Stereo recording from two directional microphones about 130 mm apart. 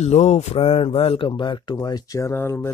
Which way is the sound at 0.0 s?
55° left (ahead or behind).